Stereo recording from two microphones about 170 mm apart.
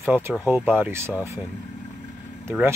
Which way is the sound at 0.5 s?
10° right (ahead or behind).